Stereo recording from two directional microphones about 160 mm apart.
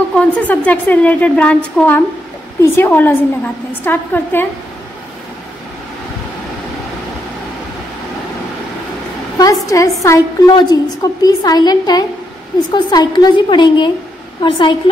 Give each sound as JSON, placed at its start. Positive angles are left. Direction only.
{"t": 0.1, "sound": "a woman's voice", "side_deg": 10}
{"t": 9.4, "sound": "a woman's voice", "side_deg": 20}